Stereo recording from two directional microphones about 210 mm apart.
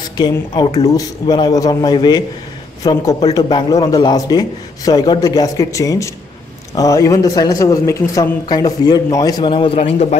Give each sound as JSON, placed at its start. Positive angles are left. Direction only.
{"t": 0.2, "sound": "a man's voice", "side_deg": 20}